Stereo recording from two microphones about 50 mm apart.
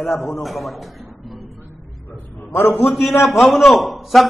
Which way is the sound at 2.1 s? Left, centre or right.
Left.